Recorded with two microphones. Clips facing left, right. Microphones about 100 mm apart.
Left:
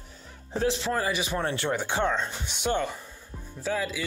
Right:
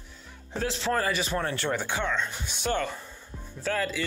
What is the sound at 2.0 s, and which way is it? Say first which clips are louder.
Speech: left 3 dB; 35° left (ahead or behind).